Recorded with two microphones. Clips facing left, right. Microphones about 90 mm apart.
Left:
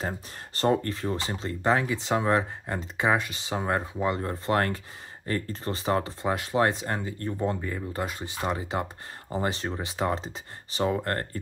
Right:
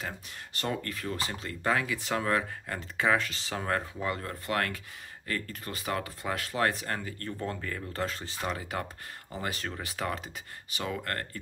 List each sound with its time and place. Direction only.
0.6 s speech: 30° left (ahead or behind)